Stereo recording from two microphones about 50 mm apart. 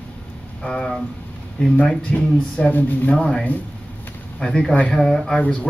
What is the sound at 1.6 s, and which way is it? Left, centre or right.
Speech, left.